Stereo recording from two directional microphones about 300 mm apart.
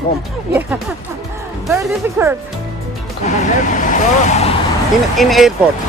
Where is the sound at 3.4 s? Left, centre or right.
Left.